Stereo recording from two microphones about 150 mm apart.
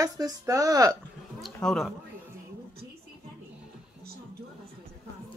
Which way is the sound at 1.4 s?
Centre (ahead or behind).